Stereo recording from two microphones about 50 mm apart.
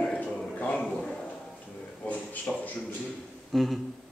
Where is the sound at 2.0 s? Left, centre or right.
Left.